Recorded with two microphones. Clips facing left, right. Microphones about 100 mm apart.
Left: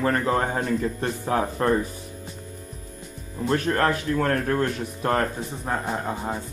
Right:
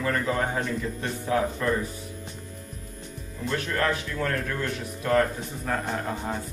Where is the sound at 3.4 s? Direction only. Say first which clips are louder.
Left 5 dB; 40° left (ahead or behind).